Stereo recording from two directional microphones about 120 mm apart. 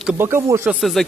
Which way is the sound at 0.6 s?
Centre (ahead or behind).